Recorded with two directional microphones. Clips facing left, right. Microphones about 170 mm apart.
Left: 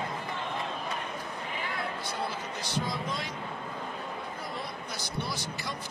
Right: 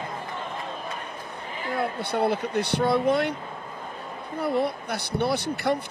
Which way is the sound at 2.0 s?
60° right (ahead or behind).